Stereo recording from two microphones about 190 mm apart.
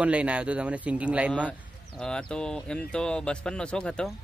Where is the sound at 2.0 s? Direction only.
5° left (ahead or behind).